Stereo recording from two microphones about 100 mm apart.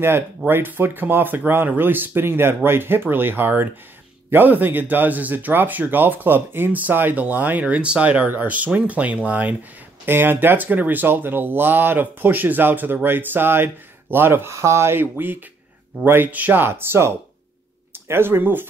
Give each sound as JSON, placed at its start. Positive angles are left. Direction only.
{"t": 0.5, "sound": "speech", "side_deg": -20}